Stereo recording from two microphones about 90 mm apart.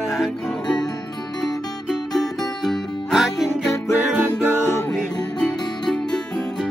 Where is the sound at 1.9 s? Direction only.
5° left (ahead or behind).